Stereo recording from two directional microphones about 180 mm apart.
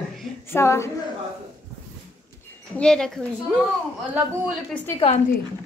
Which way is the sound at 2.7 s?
5° left (ahead or behind).